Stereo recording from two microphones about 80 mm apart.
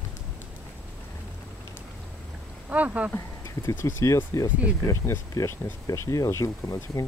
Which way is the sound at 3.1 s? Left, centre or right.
Left.